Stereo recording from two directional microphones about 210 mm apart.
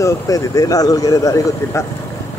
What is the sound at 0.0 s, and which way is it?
Speech, 15° left (ahead or behind).